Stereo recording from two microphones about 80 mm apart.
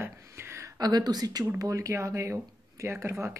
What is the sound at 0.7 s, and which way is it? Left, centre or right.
Speech, right.